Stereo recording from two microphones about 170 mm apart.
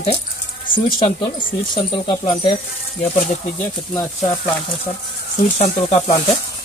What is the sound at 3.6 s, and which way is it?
Speech, 10° left (ahead or behind).